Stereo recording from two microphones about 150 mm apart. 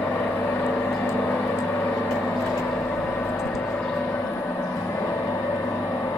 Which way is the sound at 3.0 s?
15° left (ahead or behind).